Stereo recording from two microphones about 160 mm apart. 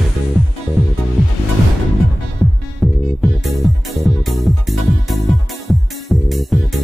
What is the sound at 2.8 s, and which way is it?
Music, centre (ahead or behind).